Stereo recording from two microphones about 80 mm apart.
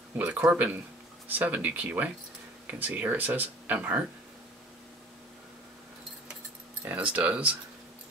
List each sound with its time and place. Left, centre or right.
0.2 s speech: right
6.8 s speech: centre